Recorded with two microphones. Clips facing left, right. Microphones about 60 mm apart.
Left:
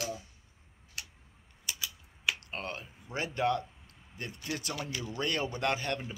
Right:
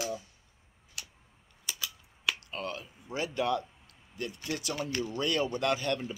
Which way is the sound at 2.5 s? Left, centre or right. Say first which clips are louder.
Right 2 dB; left.